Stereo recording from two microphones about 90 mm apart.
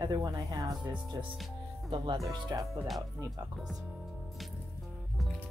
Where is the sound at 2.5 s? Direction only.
40° right (ahead or behind).